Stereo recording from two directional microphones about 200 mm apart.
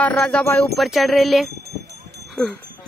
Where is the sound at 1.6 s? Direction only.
55° right (ahead or behind).